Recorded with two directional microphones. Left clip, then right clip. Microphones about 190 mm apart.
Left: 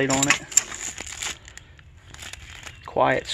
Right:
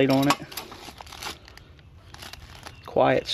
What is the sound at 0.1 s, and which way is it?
Speech, 10° right (ahead or behind).